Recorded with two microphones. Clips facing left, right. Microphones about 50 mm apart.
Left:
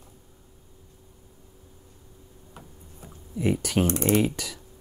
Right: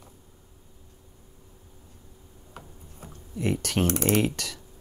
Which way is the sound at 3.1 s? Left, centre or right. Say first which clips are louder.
Left 2 dB; centre.